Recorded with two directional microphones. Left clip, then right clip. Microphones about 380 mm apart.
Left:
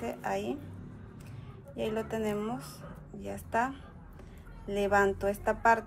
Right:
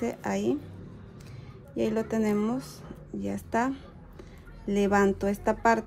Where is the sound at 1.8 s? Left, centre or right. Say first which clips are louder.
Right 5 dB; right.